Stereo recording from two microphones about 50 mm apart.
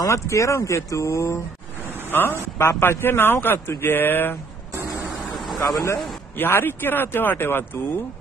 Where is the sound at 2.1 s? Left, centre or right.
Left.